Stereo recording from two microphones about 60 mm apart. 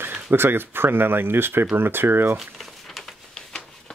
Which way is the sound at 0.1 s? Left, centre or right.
Right.